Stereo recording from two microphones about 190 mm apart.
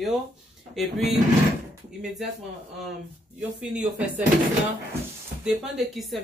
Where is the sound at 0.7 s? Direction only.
Centre (ahead or behind).